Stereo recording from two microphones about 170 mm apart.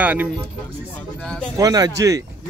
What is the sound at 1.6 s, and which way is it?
Speech, 20° right (ahead or behind).